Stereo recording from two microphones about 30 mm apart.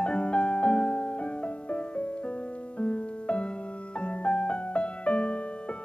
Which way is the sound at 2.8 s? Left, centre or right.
Left.